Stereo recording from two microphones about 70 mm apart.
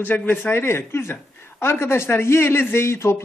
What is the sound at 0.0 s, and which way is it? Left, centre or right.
A man's voice, left.